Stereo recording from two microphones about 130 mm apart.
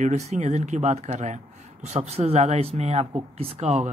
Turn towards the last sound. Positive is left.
turn(degrees=-60)  # may be behind; listen again after turning